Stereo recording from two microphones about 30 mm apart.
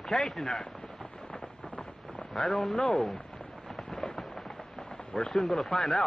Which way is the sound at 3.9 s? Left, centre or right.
Centre.